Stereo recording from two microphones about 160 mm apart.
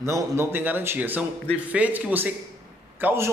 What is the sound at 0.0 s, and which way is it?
A man's voice, 15° right (ahead or behind).